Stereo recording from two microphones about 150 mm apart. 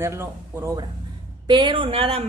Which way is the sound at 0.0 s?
15° right (ahead or behind).